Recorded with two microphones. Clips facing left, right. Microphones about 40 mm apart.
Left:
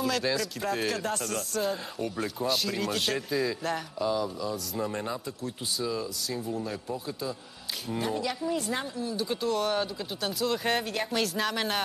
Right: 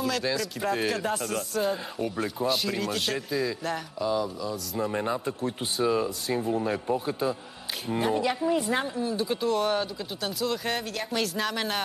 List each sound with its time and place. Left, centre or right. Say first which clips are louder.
0.0 s speech: even; centre
4.9 s speech: right 5 dB; right
5.2 s speech: right 6 dB; right
7.9 s speech: right 5 dB; right; by 11.8 s centre